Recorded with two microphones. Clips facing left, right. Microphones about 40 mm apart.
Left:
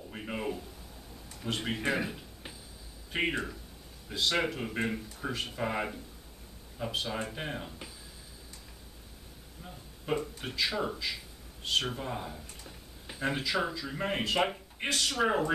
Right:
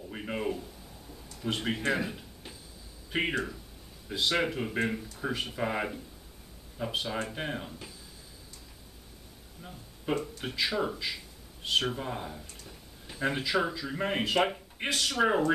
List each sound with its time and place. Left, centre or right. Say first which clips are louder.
0.1 s a sound: right 3 dB; centre
1.4 s speech: right 2 dB; centre
9.6 s speech: right 1 dB; centre